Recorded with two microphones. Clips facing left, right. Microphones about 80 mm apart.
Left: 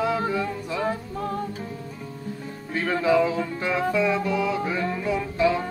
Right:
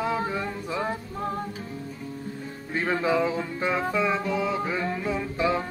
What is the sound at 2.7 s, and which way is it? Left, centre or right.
Music, right.